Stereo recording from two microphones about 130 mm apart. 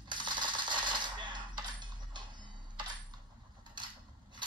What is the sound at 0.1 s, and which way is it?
Coin, 35° right (ahead or behind).